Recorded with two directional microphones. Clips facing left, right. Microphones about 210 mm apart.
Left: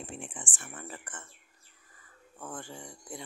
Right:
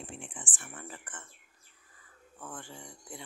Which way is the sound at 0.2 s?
45° left (ahead or behind).